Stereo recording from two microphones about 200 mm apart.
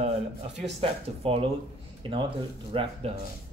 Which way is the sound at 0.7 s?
30° right (ahead or behind).